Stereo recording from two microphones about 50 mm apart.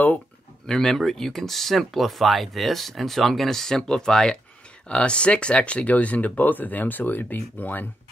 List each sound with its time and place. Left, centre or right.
0.7 s speech: centre; by 7.8 s left